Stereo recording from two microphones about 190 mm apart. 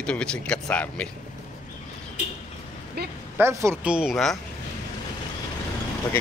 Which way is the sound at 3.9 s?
5° right (ahead or behind).